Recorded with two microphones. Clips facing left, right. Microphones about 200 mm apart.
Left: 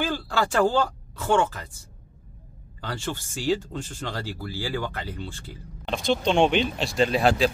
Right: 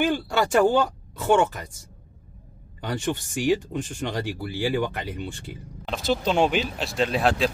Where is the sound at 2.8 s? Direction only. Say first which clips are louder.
Right 5 dB; 20° right (ahead or behind).